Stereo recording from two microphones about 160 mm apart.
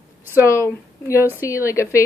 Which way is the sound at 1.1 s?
15° right (ahead or behind).